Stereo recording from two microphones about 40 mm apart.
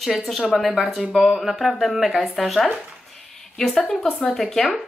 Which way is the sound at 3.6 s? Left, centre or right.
Centre.